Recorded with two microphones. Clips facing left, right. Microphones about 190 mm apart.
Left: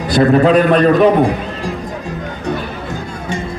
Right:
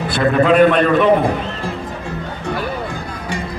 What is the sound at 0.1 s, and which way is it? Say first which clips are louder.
Speech: left 4 dB; 35° left (ahead or behind).